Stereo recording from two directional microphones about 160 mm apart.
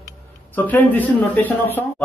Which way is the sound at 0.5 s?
10° left (ahead or behind).